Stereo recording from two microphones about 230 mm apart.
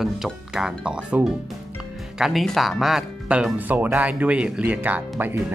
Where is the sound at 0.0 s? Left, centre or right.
Centre.